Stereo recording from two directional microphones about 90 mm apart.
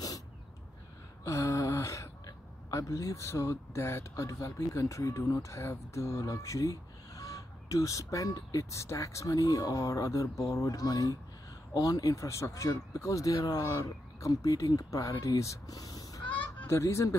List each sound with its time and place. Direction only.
1.2 s speech: 35° left (ahead or behind)
16.6 s speech: 30° left (ahead or behind)